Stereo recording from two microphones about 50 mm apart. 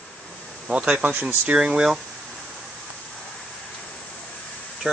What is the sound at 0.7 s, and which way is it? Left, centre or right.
Speech, centre.